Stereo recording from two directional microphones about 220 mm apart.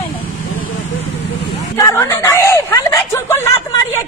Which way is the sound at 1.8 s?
15° left (ahead or behind).